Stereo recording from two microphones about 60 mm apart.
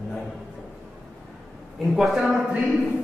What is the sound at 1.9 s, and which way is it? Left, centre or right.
Speech, centre.